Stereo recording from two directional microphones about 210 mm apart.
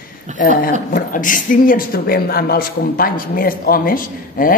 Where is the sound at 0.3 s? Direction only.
35° right (ahead or behind).